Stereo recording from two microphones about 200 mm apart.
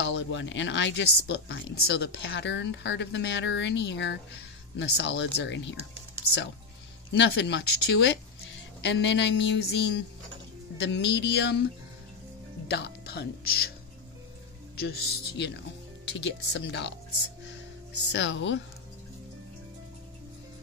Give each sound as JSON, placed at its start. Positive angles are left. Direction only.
{"t": 0.0, "sound": "speech", "side_deg": 65}
{"t": 7.1, "sound": "speech", "side_deg": 60}
{"t": 12.6, "sound": "speech", "side_deg": 55}
{"t": 14.8, "sound": "speech", "side_deg": 50}
{"t": 18.1, "sound": "speech", "side_deg": 65}